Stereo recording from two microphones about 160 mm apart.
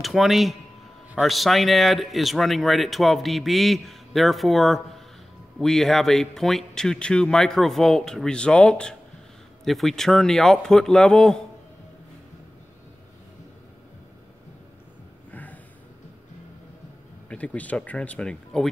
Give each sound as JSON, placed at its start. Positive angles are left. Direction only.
{"t": 0.0, "sound": "speech", "side_deg": 0}
{"t": 15.3, "sound": "snort", "side_deg": 10}
{"t": 17.3, "sound": "speech", "side_deg": 10}